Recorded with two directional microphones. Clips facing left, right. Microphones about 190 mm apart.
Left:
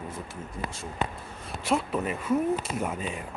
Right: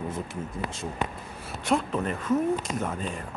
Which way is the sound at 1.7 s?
5° left (ahead or behind).